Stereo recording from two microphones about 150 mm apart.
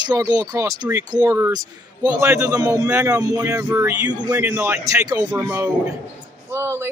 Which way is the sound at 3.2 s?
25° right (ahead or behind).